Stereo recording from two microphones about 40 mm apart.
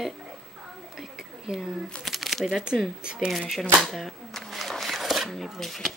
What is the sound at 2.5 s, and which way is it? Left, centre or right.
Speech, centre.